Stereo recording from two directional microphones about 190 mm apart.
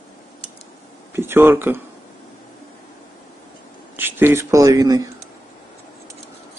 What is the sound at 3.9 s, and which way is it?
Speech, 10° right (ahead or behind).